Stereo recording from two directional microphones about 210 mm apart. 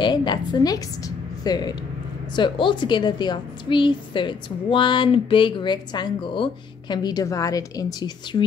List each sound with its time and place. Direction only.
0.0 s a woman's voice: 20° left (ahead or behind)